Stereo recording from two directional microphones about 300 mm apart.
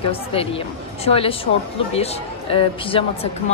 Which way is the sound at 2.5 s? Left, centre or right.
Centre.